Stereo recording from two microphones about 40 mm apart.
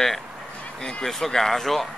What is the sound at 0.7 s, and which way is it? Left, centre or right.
Speech, centre.